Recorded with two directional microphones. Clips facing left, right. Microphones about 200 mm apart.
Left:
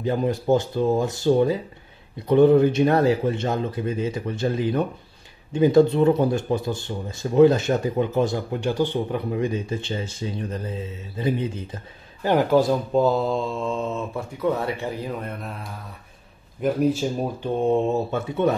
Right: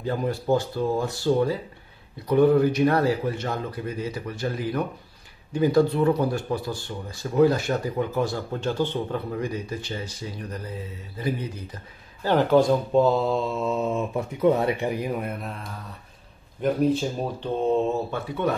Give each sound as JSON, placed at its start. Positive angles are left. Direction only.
{"t": 0.0, "sound": "speech", "side_deg": 20}
{"t": 16.6, "sound": "speech", "side_deg": 5}
{"t": 18.1, "sound": "speech", "side_deg": 25}